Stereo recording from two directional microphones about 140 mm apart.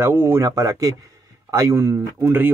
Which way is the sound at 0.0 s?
15° right (ahead or behind).